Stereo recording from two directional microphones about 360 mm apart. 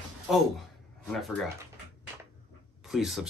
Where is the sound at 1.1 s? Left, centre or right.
Centre.